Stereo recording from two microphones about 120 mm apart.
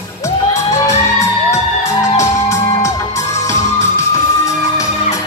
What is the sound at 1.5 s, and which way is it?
Music, 25° left (ahead or behind).